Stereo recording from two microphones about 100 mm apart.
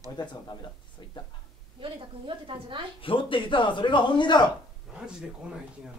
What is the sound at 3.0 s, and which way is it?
Speech, 60° left (ahead or behind).